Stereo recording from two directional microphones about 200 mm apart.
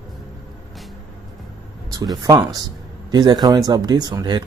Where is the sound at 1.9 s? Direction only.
20° right (ahead or behind).